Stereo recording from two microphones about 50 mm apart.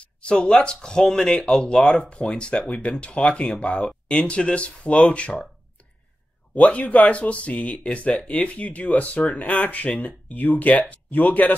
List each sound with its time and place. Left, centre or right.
0.0 s speech: left
6.5 s speech: left